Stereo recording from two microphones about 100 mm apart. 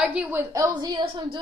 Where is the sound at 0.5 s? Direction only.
45° right (ahead or behind).